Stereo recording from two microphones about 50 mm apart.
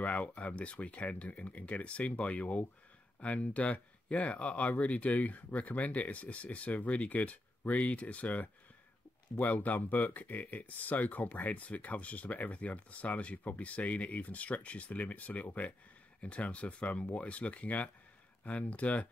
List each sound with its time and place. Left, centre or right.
0.0 s speech: left